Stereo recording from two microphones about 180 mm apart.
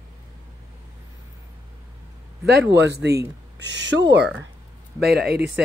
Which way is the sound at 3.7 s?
90° right.